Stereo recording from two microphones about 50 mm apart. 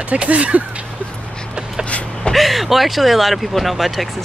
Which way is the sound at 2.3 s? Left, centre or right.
Centre.